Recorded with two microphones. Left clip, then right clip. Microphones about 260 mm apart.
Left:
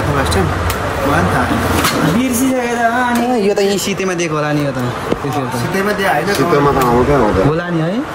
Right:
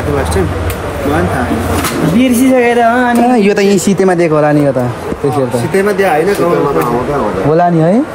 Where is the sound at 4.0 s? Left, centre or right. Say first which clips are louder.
Right 8 dB; centre.